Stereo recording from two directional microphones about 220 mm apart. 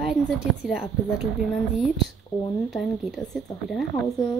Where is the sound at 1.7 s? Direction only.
Centre (ahead or behind).